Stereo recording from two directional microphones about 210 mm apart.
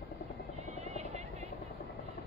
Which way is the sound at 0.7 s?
30° right (ahead or behind).